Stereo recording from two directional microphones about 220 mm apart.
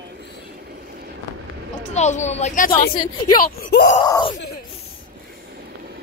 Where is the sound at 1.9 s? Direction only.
30° left (ahead or behind).